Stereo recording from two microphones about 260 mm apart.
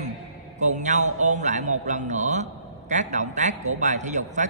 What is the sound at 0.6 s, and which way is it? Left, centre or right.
A man's voice, right.